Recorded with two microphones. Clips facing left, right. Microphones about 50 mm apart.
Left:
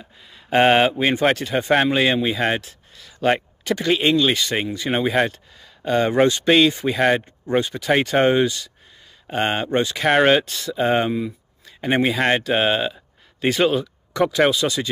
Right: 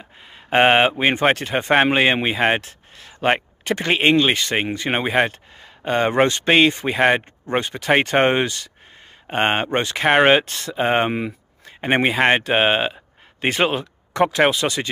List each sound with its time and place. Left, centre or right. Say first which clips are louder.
0.2 s speech: right 1 dB; right
10.0 s speech: right 2 dB; right
10.4 s speech: even; right
11.1 s speech: even; right
11.6 s speech: right 1 dB; right